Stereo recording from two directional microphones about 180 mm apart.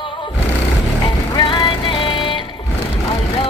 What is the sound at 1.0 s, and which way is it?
Music, 25° left (ahead or behind).